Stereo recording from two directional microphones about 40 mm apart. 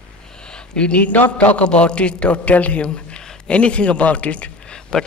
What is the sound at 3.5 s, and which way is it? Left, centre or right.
A man's voice, left.